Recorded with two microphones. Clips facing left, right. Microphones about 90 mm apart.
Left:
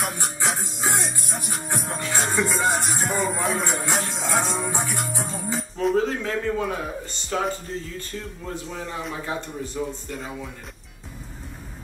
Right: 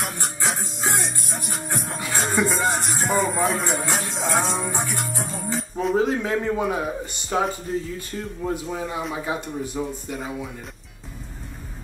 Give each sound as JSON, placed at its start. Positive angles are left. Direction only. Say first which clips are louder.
{"t": 0.0, "sound": "music", "louder": "left 1 dB", "side_deg": 0}
{"t": 5.9, "sound": "a man's voice", "louder": "right 2 dB", "side_deg": -15}
{"t": 8.5, "sound": "a man's voice", "louder": "right 6 dB", "side_deg": -10}